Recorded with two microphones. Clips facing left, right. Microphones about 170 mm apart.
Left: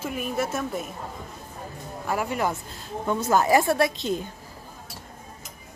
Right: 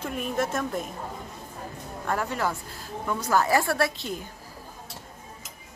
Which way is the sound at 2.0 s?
10° left (ahead or behind).